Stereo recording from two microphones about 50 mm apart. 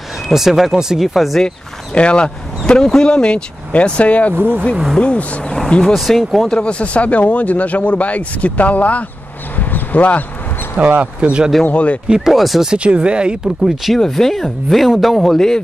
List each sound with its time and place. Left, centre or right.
0.3 s speech: centre
2.0 s speech: left
4.4 s speech: right
5.0 s speech: left
5.9 s speech: centre
6.6 s speech: left
9.6 s a sound: left
10.8 s speech: right
11.7 s speech: left
12.1 s speech: centre
12.6 s speech: right
13.9 s speech: centre